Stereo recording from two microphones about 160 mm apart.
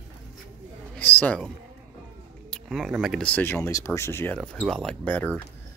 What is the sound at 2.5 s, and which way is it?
Speech, centre (ahead or behind).